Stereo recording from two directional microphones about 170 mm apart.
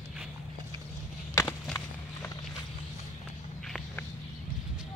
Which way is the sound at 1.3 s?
15° left (ahead or behind).